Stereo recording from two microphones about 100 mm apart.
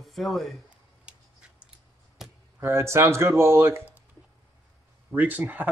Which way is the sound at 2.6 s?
25° right (ahead or behind).